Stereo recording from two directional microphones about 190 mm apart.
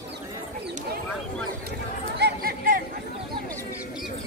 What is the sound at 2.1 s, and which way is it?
Chatter, 55° right (ahead or behind).